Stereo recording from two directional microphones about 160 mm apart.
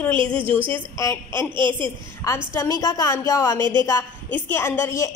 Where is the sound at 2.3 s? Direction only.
20° left (ahead or behind).